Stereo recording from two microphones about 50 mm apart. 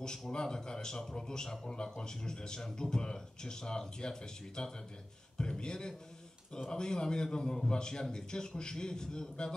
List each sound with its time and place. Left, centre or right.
0.3 s a man's voice: centre